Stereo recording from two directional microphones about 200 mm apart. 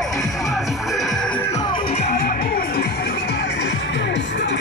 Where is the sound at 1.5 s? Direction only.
25° left (ahead or behind).